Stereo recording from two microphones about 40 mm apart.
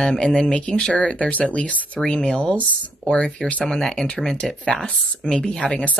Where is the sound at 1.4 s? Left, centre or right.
Left.